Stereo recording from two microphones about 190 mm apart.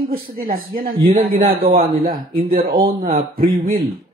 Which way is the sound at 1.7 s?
50° right (ahead or behind).